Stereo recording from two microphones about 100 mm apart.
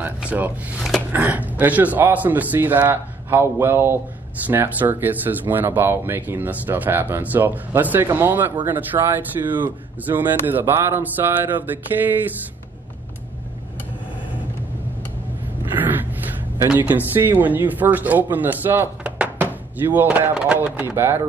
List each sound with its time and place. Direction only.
0.0 s speech: 15° right (ahead or behind)
15.6 s a sound: 20° right (ahead or behind)
16.7 s speech: 20° right (ahead or behind)